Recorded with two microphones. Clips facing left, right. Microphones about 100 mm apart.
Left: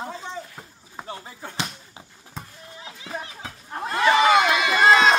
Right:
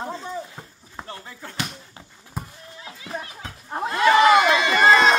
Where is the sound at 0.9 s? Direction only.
15° left (ahead or behind).